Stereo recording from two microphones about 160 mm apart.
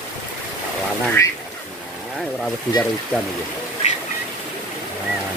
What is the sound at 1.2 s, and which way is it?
Speech, 20° left (ahead or behind).